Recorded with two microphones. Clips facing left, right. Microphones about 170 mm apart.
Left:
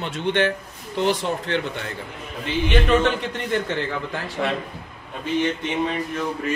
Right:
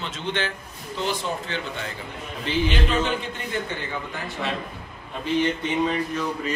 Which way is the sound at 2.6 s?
65° left (ahead or behind).